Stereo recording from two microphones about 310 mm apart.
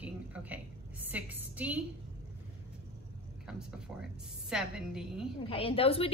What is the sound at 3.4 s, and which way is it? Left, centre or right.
A woman's voice, centre.